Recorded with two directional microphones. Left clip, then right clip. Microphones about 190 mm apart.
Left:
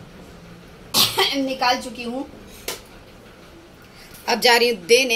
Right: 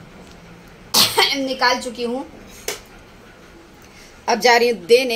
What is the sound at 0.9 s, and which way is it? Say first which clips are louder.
Cough: right 3 dB; 50° right (ahead or behind).